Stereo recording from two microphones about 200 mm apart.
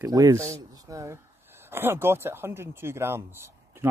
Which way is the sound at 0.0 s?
15° right (ahead or behind).